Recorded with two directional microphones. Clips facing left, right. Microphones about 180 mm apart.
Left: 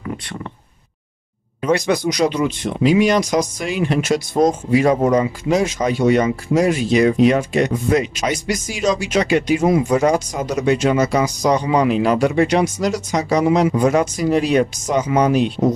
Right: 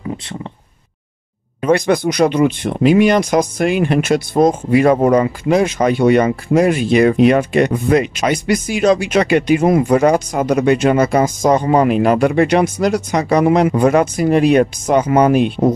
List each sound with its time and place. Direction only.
1.6 s speech: 55° right (ahead or behind)